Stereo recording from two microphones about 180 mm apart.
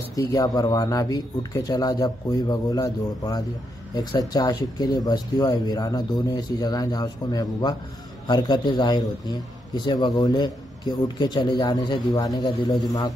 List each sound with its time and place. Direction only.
0.1 s a man's voice: 20° left (ahead or behind)